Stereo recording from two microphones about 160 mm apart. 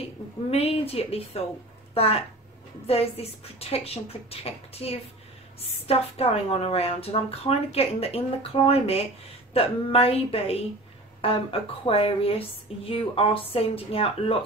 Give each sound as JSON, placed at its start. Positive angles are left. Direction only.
{"t": 0.5, "sound": "a woman's voice", "side_deg": 40}